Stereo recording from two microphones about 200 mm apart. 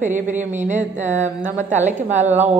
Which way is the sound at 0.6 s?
40° right (ahead or behind).